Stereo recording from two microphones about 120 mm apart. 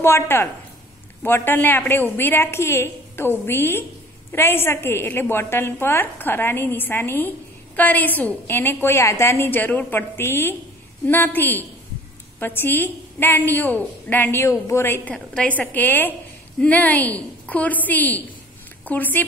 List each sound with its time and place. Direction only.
0.0 s a woman's voice: 20° left (ahead or behind)